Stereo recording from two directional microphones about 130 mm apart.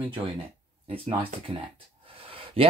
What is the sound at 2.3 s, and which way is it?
Gasp, 45° right (ahead or behind).